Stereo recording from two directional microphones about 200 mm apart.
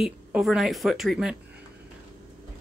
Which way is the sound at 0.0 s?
5° right (ahead or behind).